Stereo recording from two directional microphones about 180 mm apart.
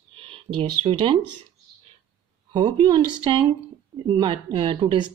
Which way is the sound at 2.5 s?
25° right (ahead or behind).